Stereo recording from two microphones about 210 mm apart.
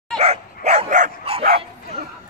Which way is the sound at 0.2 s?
30° right (ahead or behind).